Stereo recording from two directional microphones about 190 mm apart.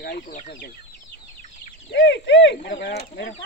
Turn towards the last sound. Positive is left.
turn(degrees=60)  # may be behind; listen again after turning